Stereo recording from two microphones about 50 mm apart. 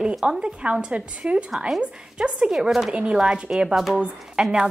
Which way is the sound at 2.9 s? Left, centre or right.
Right.